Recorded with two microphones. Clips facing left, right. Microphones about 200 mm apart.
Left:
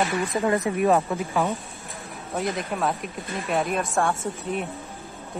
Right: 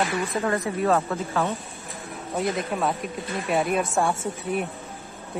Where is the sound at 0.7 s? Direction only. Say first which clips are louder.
Left 2 dB; 15° left (ahead or behind).